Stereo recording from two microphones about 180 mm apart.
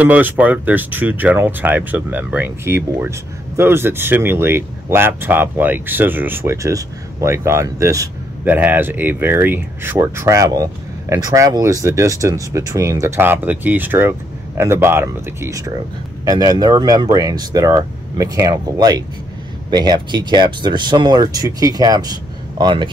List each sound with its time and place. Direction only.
0.0 s speech: 10° right (ahead or behind); by 22.8 s 25° right (ahead or behind)